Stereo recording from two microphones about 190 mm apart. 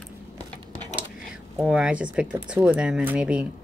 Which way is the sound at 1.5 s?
5° right (ahead or behind).